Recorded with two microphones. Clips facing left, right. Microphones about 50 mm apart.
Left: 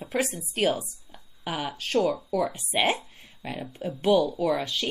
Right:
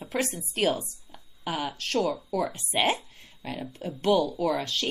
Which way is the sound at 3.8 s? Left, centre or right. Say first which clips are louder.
Left 2 dB; centre.